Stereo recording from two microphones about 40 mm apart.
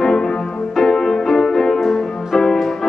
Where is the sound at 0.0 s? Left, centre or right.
Centre.